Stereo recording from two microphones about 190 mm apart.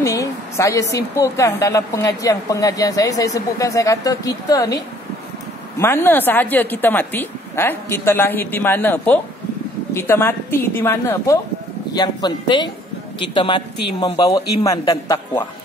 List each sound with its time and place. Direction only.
0.0 s a woman's voice: 15° left (ahead or behind)
5.8 s a woman's voice: 10° left (ahead or behind)